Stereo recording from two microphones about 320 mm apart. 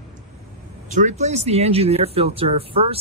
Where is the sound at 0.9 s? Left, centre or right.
Right.